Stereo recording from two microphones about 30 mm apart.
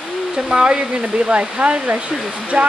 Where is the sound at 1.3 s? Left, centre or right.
Right.